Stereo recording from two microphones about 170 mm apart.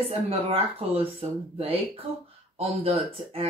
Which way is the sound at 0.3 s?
35° right (ahead or behind).